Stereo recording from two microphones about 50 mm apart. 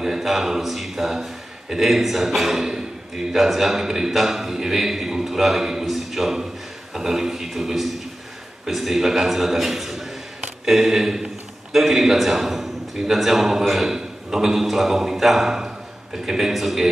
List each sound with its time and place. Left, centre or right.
0.0 s a man's voice: centre